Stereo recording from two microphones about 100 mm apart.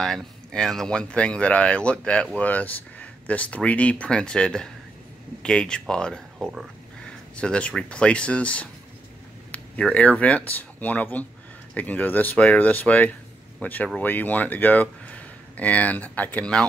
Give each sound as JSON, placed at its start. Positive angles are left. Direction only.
{"t": 0.0, "sound": "speech", "side_deg": 5}
{"t": 6.4, "sound": "speech", "side_deg": -5}
{"t": 7.3, "sound": "speech", "side_deg": 10}